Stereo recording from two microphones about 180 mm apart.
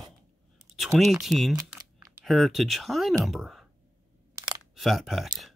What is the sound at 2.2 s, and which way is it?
Speech, centre (ahead or behind).